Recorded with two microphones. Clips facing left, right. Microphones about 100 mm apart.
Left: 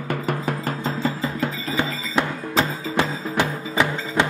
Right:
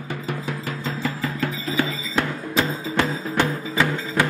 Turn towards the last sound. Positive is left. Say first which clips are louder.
# left 1 dB
turn(degrees=20)  # may be behind; listen again after turning